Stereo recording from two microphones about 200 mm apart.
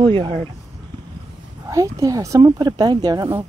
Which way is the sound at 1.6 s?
15° right (ahead or behind).